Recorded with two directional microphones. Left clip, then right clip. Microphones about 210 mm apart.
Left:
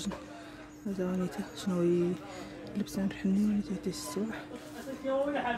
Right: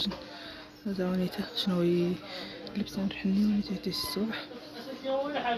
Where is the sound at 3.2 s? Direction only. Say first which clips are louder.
Right 1 dB; centre (ahead or behind).